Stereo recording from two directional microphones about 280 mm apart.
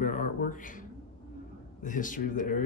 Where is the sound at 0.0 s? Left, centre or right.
Left.